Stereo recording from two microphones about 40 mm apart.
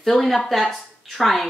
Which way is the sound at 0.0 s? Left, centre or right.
Centre.